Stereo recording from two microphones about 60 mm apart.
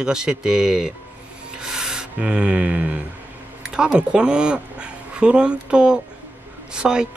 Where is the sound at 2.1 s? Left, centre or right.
Centre.